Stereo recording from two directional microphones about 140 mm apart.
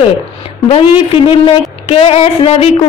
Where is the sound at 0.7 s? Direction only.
45° left (ahead or behind).